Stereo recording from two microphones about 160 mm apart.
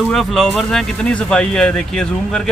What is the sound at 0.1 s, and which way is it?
Speech, 5° left (ahead or behind).